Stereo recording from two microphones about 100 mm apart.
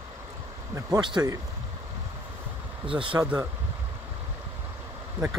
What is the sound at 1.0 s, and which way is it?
Speech, 50° right (ahead or behind).